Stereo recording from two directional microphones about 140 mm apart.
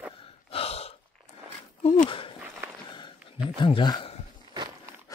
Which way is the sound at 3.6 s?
35° left (ahead or behind).